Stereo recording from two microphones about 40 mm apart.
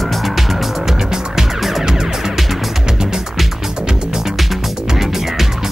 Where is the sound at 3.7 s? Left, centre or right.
Centre.